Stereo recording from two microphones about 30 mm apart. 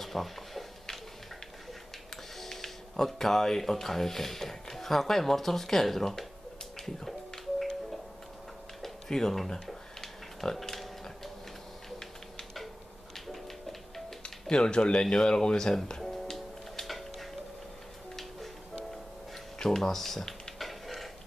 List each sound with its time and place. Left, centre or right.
0.0 s a sound: centre
2.4 s speech: centre
7.1 s music: centre
8.8 s tick-tock: centre
10.4 s a sound: centre
13.1 s music: centre
14.2 s speech: left
16.0 s music: centre
19.6 s speech: centre
20.5 s a sound: centre